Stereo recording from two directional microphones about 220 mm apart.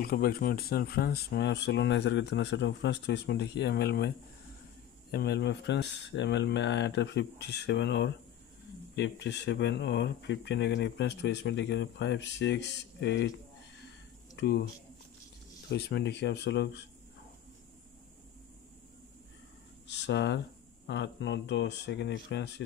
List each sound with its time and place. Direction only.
0.0 s speech: 40° left (ahead or behind)
5.1 s speech: 50° left (ahead or behind)
14.3 s speech: 50° left (ahead or behind)
15.7 s speech: 50° left (ahead or behind)
19.9 s speech: 50° left (ahead or behind)